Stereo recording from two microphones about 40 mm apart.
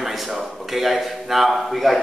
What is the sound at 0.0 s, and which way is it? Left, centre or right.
Speech, centre.